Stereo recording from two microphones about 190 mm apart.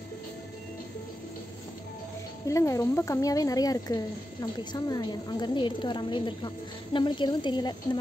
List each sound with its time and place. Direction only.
2.4 s speech: 15° left (ahead or behind)